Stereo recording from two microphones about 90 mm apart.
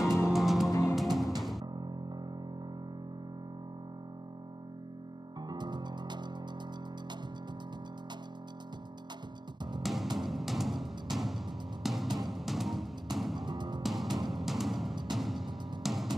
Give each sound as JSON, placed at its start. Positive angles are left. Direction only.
{"t": 0.3, "sound": "music", "side_deg": 0}
{"t": 0.7, "sound": "music", "side_deg": 35}
{"t": 0.9, "sound": "music", "side_deg": 0}
{"t": 1.8, "sound": "music", "side_deg": -50}
{"t": 5.5, "sound": "music", "side_deg": -55}
{"t": 9.8, "sound": "music", "side_deg": 0}
{"t": 13.5, "sound": "music", "side_deg": -55}
{"t": 13.8, "sound": "music", "side_deg": -5}